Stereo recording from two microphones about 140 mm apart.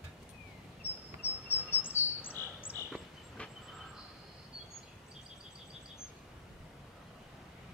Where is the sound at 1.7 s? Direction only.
15° left (ahead or behind).